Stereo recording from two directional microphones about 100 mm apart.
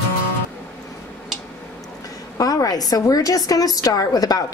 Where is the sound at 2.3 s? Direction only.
40° left (ahead or behind).